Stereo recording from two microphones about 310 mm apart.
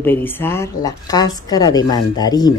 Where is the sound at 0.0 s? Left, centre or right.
Centre.